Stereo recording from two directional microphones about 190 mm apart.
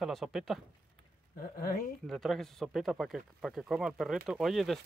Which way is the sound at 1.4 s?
50° left (ahead or behind).